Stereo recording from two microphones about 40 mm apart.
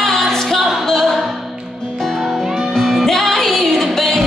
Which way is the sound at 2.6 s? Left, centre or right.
Centre.